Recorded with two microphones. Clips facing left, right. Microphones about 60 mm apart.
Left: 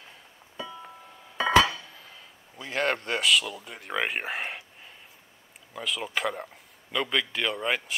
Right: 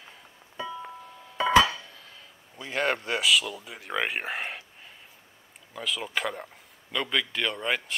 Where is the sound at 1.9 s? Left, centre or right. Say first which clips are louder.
Left 1 dB; centre.